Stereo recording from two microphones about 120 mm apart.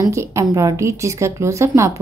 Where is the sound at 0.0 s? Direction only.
25° right (ahead or behind).